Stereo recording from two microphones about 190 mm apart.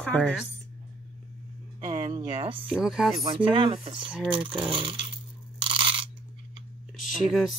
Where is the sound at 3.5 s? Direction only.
30° right (ahead or behind).